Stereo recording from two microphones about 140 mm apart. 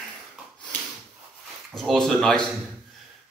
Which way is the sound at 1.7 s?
5° left (ahead or behind).